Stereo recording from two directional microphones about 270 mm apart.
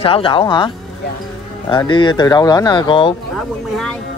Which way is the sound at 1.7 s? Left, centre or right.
Centre.